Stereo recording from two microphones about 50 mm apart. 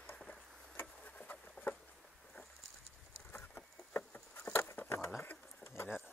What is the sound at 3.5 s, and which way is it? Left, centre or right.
Patter, left.